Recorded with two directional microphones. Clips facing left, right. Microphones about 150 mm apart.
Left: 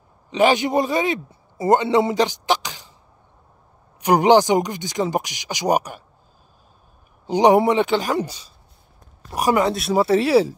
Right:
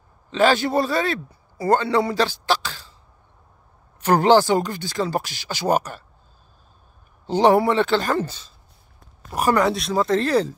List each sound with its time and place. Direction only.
0.3 s speech: 15° left (ahead or behind)
4.0 s speech: 15° left (ahead or behind)
7.2 s speech: 15° left (ahead or behind)